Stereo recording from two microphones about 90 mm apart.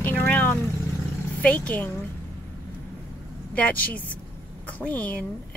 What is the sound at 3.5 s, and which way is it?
Speech, 15° left (ahead or behind).